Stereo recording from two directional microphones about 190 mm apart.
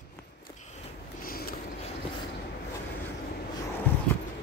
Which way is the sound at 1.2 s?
50° left (ahead or behind).